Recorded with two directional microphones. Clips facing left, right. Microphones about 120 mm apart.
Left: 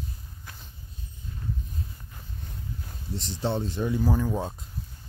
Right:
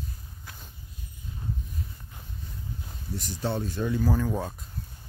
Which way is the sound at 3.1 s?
25° left (ahead or behind).